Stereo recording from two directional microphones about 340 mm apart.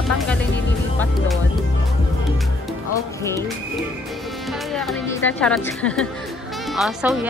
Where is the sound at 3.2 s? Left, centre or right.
Centre.